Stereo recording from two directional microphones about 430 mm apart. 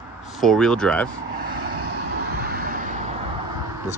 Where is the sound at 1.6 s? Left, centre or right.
Right.